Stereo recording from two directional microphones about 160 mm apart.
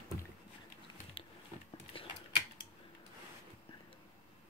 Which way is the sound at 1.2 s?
35° left (ahead or behind).